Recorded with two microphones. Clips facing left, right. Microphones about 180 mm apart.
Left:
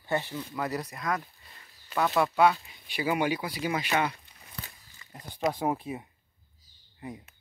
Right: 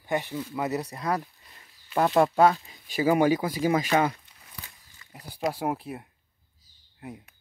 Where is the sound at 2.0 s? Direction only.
40° right (ahead or behind).